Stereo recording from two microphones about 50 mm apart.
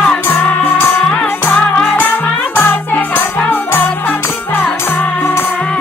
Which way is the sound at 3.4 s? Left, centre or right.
Left.